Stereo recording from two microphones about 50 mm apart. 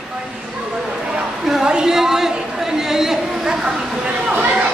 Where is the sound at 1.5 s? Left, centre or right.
Centre.